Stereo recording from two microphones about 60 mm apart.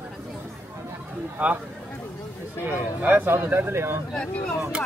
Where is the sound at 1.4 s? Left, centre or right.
Right.